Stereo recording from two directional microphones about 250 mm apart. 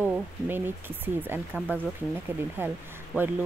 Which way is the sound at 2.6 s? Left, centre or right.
Centre.